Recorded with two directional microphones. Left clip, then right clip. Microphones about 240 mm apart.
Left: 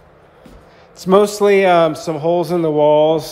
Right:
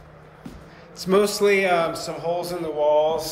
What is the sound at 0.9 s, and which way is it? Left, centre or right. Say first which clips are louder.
A man's voice: left 7 dB; centre.